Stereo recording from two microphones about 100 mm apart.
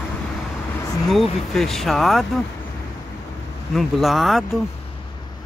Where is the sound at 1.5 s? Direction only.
5° left (ahead or behind).